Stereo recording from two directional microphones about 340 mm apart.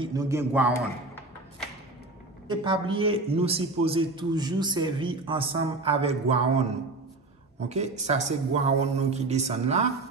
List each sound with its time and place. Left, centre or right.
0.0 s a man's voice: centre
2.4 s a man's voice: centre